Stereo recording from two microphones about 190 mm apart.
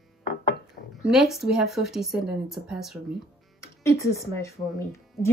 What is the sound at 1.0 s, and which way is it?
A woman's voice, centre (ahead or behind).